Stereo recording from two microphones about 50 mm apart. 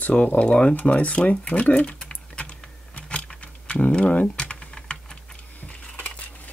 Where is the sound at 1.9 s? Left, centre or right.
Centre.